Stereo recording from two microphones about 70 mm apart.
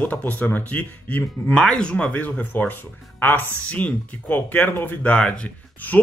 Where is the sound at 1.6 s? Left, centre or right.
Centre.